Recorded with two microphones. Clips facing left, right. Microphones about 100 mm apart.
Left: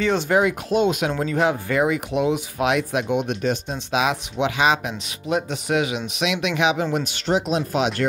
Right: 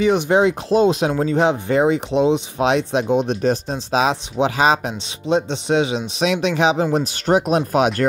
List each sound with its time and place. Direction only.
0.0 s speech: 20° right (ahead or behind)
7.2 s speech: 50° right (ahead or behind)